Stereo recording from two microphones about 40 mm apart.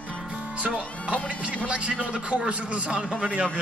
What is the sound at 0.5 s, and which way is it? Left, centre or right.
Music, right.